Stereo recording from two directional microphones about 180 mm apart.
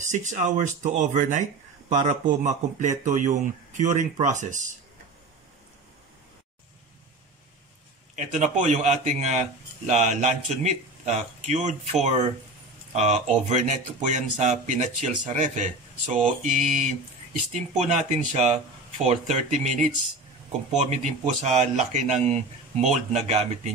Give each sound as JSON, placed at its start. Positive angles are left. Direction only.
{"t": 0.0, "sound": "speech", "side_deg": -40}
{"t": 8.2, "sound": "speech", "side_deg": -45}